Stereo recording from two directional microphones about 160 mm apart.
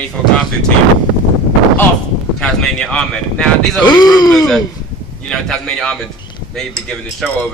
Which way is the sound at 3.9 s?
25° left (ahead or behind).